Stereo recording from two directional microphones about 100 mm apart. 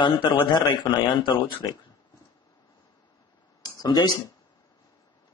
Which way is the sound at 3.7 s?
40° left (ahead or behind).